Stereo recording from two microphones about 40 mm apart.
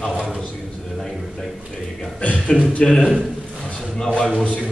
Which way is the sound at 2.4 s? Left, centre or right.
Left.